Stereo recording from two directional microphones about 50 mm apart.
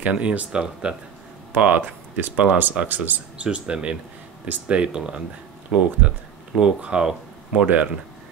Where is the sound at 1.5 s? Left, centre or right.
Right.